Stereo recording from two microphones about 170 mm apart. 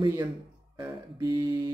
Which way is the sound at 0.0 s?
25° right (ahead or behind).